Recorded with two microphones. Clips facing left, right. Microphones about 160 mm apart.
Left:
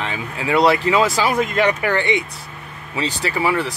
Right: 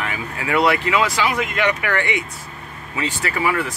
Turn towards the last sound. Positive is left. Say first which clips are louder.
# left 2 dB
turn(degrees=30)  # may be behind; listen again after turning